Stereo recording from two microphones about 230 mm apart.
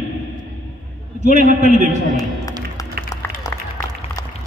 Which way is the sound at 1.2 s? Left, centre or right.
Right.